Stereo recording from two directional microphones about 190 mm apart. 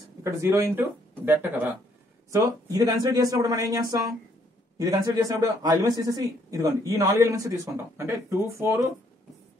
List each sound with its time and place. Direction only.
0.2 s speech: 15° right (ahead or behind)